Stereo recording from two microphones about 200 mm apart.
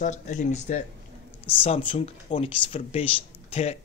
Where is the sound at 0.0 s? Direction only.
35° left (ahead or behind).